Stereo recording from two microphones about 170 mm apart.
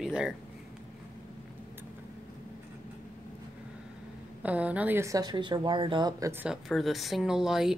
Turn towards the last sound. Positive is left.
turn(degrees=-5)  # may be behind; listen again after turning